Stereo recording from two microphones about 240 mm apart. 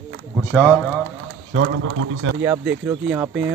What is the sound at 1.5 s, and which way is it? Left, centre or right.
Speech, right.